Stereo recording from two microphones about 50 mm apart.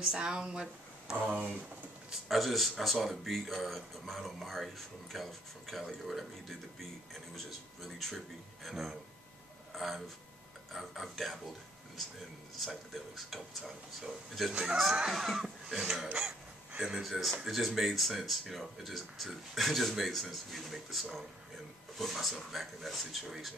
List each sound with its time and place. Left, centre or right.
0.0 s speech: centre
1.2 s speech: right
2.2 s speech: centre
8.6 s speech: centre
12.5 s speech: centre
14.5 s speech: centre
15.0 s speech: centre
16.7 s speech: centre
17.0 s speech: centre